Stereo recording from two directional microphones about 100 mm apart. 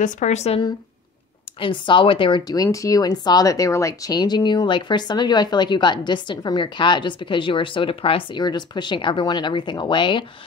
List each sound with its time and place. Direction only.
0.3 s speech: 90° left
1.6 s speech: 55° left (ahead or behind)
2.4 s speech: 40° left (ahead or behind); by 10.2 s 55° left (ahead or behind)